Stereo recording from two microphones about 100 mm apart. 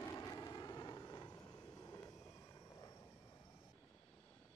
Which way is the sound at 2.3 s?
35° left (ahead or behind).